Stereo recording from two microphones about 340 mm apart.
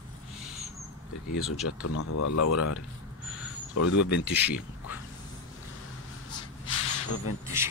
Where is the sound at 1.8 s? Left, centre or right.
Left.